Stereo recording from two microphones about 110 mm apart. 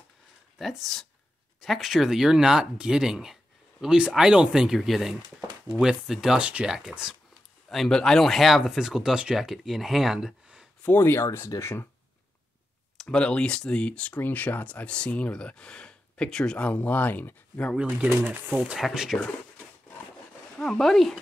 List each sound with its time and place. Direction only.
0.6 s speech: centre (ahead or behind)
10.8 s speech: 20° left (ahead or behind)
12.9 s speech: 5° left (ahead or behind)
17.7 s speech: 10° right (ahead or behind)
18.8 s speech: centre (ahead or behind)
20.6 s speech: 5° left (ahead or behind)